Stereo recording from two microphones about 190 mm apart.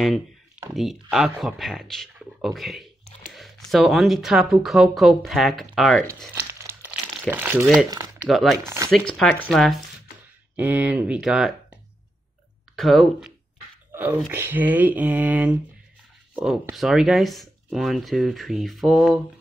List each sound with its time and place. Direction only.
0.7 s speech: centre (ahead or behind)
6.3 s crumpling: 10° right (ahead or behind)
7.9 s a sound: 20° right (ahead or behind)
8.3 s speech: centre (ahead or behind)
8.6 s speech: 15° right (ahead or behind)
8.9 s speech: 5° left (ahead or behind)
10.5 s speech: 10° right (ahead or behind)
13.9 s speech: 10° right (ahead or behind)